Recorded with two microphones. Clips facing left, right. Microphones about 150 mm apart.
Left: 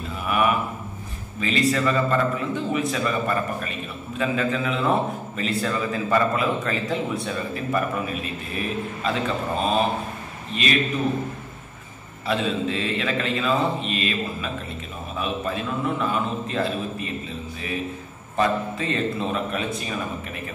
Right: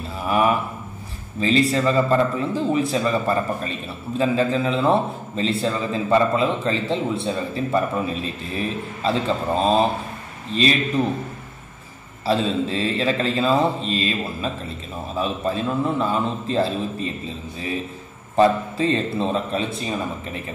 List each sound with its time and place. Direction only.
0.3 s a man's voice: 30° right (ahead or behind)
12.3 s a man's voice: 35° right (ahead or behind)
18.3 s a man's voice: 30° right (ahead or behind)